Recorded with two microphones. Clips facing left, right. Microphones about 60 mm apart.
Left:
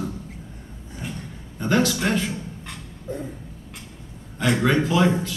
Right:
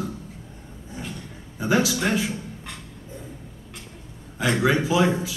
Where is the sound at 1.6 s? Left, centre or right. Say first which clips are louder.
Left 1 dB; centre.